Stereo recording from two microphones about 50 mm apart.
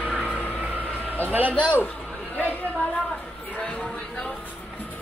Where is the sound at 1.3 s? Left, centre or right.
Right.